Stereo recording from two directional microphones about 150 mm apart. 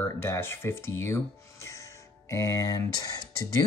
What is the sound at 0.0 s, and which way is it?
Speech, 15° left (ahead or behind).